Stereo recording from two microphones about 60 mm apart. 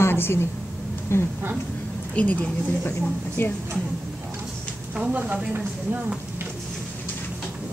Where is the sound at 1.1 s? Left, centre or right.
Left.